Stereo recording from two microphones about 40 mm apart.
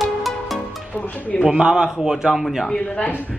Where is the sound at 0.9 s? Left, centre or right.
Left.